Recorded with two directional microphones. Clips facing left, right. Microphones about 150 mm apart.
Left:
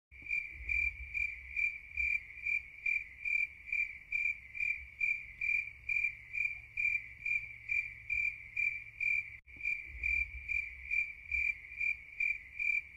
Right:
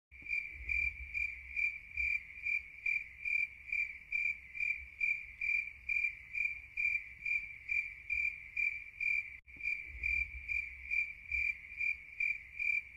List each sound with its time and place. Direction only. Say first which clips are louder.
0.3 s cricket: left 1 dB; 20° left (ahead or behind)